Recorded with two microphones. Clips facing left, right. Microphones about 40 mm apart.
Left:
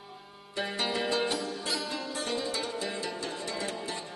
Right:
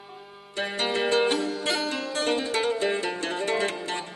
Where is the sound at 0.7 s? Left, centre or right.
Right.